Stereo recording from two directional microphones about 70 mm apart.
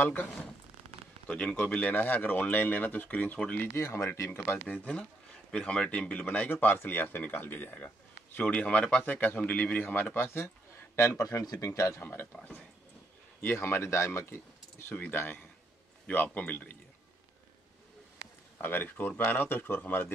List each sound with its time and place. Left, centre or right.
0.0 s speech: left
1.2 s speech: centre
3.6 s speech: left
12.0 s speech: left
13.4 s speech: left
18.6 s speech: left